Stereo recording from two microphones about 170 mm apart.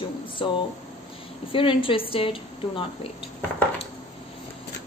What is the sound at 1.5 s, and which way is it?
Speech, 30° left (ahead or behind).